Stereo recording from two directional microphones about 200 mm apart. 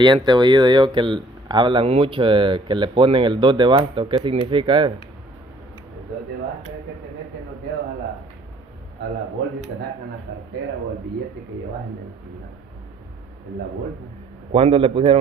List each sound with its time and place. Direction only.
0.0 s speech: 20° right (ahead or behind)
14.5 s speech: 25° right (ahead or behind)